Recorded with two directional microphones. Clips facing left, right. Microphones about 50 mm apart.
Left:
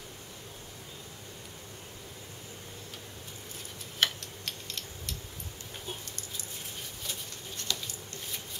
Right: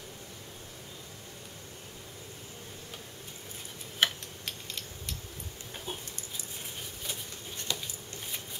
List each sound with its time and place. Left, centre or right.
4.0 s tick-tock: centre
5.9 s a sound: centre
7.1 s patter: centre